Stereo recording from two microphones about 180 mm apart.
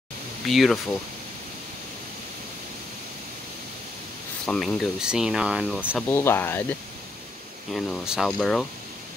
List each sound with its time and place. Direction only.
0.5 s speech: centre (ahead or behind)
4.5 s speech: centre (ahead or behind)
6.0 s speech: 15° left (ahead or behind)
7.7 s speech: centre (ahead or behind)